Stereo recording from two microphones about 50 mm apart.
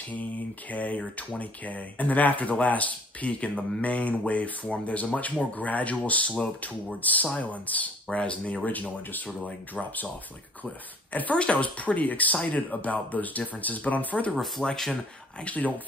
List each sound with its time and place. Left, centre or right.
0.7 s speech: left
11.3 s speech: left
14.6 s speech: centre
15.4 s speech: left